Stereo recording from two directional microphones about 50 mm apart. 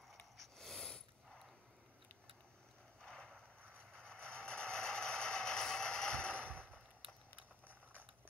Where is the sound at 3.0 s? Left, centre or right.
Centre.